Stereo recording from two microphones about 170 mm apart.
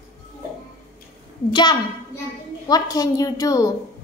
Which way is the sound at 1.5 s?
25° left (ahead or behind).